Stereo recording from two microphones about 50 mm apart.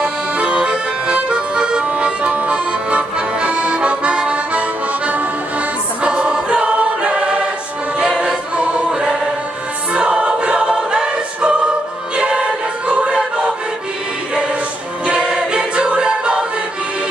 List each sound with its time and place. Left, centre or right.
0.0 s accordion: centre
6.0 s choir: centre
15.0 s music: centre